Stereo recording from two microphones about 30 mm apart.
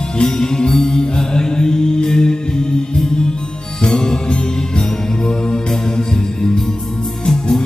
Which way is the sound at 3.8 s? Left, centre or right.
Centre.